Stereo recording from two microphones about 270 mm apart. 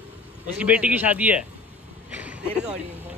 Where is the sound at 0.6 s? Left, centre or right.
Centre.